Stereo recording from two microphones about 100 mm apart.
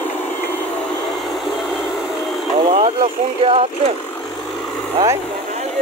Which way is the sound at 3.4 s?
70° right (ahead or behind).